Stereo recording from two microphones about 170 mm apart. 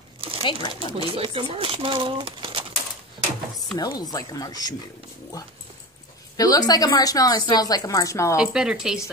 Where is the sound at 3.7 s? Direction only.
25° left (ahead or behind).